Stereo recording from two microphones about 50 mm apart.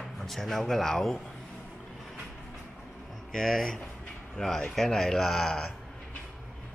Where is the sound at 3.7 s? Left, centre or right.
Left.